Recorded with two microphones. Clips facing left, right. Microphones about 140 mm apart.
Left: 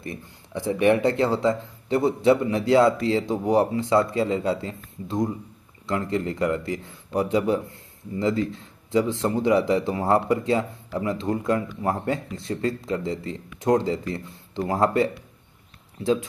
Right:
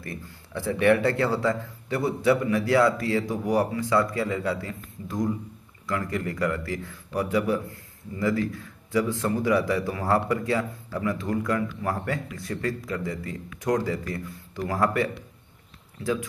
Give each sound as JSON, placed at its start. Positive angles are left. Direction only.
{"t": 0.0, "sound": "a man's voice", "side_deg": 20}